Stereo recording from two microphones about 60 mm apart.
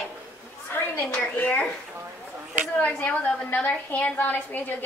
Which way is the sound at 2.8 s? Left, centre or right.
Left.